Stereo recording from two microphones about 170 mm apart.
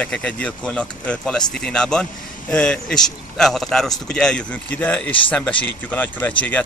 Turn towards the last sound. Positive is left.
turn(degrees=10)  # may be behind; listen again after turning